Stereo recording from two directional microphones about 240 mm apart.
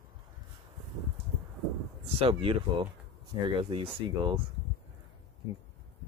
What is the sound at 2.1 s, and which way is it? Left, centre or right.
Speech, right.